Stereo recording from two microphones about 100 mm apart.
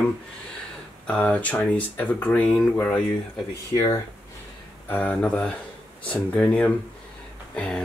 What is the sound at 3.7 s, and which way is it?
Speech, 30° left (ahead or behind).